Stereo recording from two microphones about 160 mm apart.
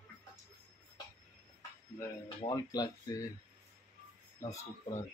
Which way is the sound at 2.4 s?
25° left (ahead or behind).